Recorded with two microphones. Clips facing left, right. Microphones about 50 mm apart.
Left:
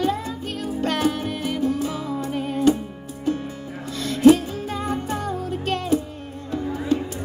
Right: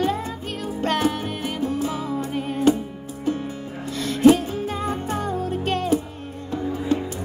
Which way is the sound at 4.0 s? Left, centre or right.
Right.